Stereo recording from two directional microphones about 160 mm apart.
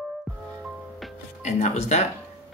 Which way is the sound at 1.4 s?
45° left (ahead or behind).